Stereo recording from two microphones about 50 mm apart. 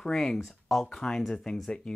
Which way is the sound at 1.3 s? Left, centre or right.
Centre.